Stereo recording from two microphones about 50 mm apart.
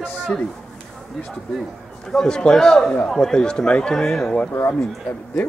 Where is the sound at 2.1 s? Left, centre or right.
Centre.